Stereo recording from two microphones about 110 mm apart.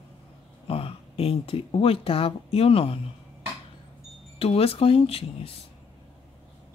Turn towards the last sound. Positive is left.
turn(degrees=60)  # may be behind; listen again after turning